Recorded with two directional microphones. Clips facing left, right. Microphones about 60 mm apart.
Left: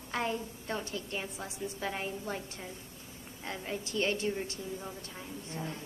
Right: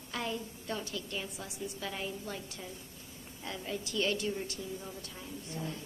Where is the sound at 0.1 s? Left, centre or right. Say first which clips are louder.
Left 3 dB; left.